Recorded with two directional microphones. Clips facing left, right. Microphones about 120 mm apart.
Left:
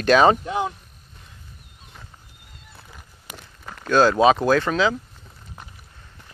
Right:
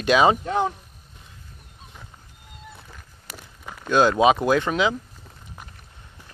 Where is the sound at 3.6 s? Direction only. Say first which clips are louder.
Left 1 dB; 10° right (ahead or behind).